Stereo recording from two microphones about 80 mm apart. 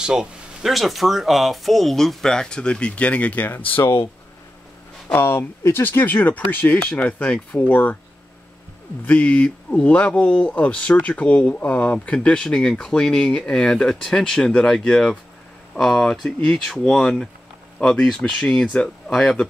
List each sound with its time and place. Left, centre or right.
0.0 s speech: centre; by 4.1 s left
5.1 s speech: left
9.0 s speech: centre